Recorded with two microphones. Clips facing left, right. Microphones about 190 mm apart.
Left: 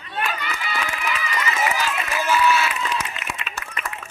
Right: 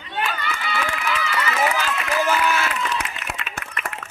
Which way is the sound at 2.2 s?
50° right (ahead or behind).